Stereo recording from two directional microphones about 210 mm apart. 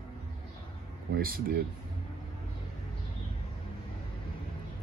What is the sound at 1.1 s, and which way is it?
Speech, 45° right (ahead or behind).